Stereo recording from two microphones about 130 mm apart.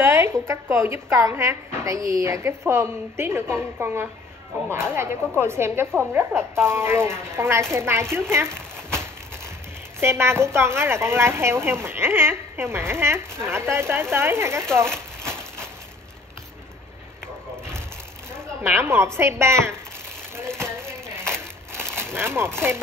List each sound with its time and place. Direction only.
0.0 s a woman's voice: 20° right (ahead or behind)
8.3 s a sound: 20° right (ahead or behind)
9.9 s a woman's voice: 20° right (ahead or behind)
14.9 s a sound: 5° left (ahead or behind)
18.3 s zipper: 20° right (ahead or behind)
19.1 s a woman's voice: 20° right (ahead or behind)
20.8 s crumpling: 20° right (ahead or behind)